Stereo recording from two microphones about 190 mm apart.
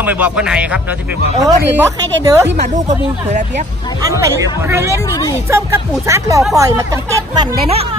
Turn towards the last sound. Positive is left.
turn(degrees=-25)  # may be behind; listen again after turning